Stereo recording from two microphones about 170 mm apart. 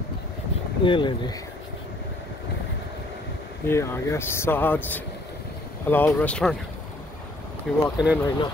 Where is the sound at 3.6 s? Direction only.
15° left (ahead or behind).